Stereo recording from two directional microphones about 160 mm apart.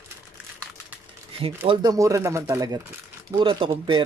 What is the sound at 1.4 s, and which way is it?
Speech, 35° right (ahead or behind).